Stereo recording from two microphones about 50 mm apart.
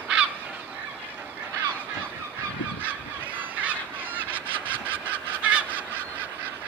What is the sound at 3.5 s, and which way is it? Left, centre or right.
Goose, right.